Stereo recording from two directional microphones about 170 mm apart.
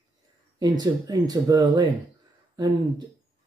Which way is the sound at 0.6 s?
20° right (ahead or behind).